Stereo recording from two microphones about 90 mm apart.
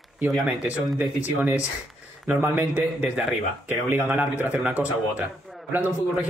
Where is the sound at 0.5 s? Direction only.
15° right (ahead or behind).